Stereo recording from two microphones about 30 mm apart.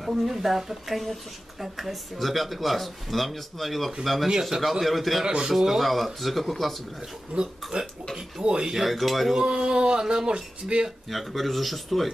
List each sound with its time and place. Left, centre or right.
0.0 s a woman's voice: centre
4.3 s speech: centre
4.6 s speech: centre
5.2 s speech: right
5.5 s a woman's voice: centre
5.8 s speech: centre
7.3 s speech: right
8.7 s speech: centre
9.4 s speech: right
11.1 s speech: centre